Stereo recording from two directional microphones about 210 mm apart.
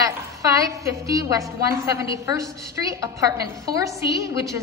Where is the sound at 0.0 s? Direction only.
15° right (ahead or behind).